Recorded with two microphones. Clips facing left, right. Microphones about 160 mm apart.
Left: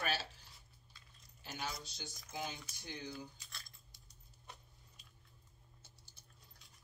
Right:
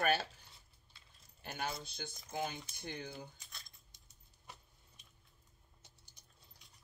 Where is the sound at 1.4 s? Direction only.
55° right (ahead or behind).